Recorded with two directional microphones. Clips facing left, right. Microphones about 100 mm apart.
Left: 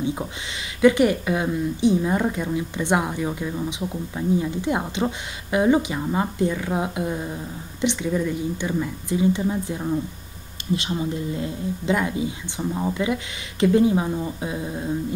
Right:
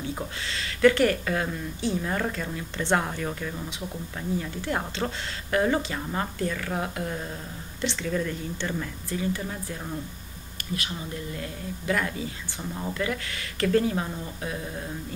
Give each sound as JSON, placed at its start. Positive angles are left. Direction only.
{"t": 0.7, "sound": "a woman's voice", "side_deg": 15}